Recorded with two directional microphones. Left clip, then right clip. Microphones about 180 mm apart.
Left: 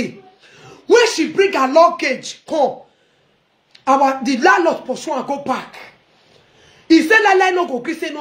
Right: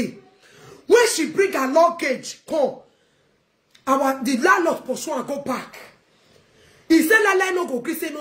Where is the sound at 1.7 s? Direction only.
25° right (ahead or behind).